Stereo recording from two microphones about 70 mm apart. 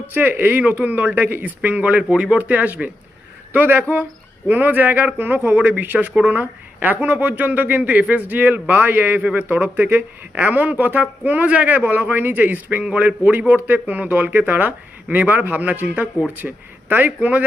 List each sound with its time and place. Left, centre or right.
0.1 s speech: right